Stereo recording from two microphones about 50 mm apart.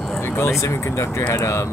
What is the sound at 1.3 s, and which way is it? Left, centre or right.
Speech, left.